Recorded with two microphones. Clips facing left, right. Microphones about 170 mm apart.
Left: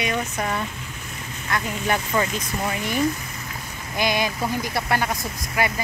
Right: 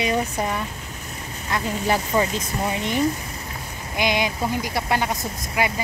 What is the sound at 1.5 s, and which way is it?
Speech, 25° right (ahead or behind).